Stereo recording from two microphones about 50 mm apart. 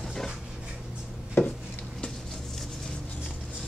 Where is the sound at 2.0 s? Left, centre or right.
Centre.